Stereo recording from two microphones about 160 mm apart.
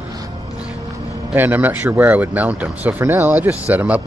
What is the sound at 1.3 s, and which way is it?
Speech, 10° right (ahead or behind).